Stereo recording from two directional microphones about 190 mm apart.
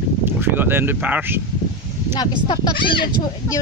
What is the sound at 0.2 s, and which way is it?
Speech, 10° right (ahead or behind).